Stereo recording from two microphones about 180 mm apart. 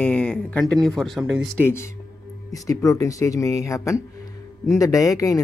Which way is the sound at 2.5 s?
20° left (ahead or behind).